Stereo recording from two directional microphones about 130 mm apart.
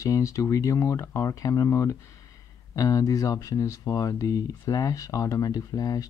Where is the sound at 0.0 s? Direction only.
25° left (ahead or behind).